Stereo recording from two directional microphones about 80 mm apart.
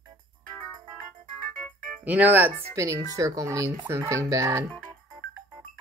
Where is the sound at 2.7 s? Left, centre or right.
Right.